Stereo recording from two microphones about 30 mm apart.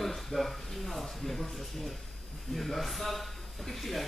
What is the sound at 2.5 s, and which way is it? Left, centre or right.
Speech, centre.